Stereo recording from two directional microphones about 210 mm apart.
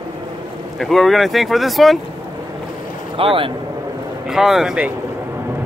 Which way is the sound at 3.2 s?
25° right (ahead or behind).